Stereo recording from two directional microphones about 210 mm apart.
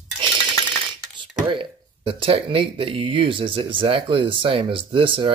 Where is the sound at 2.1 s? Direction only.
25° right (ahead or behind).